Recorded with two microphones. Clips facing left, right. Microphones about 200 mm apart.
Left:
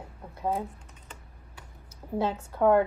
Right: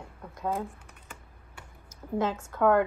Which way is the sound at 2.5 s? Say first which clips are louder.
Left 2 dB; 20° left (ahead or behind).